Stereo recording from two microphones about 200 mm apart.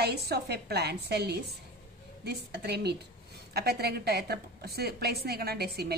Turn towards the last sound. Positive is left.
turn(degrees=-55)  # may be behind; listen again after turning